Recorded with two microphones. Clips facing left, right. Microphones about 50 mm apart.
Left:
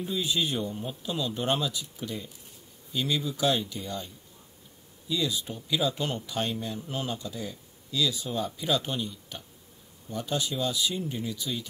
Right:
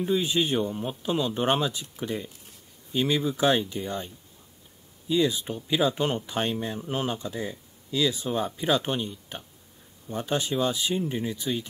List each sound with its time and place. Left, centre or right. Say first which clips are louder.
0.0 s speech: right 4 dB; right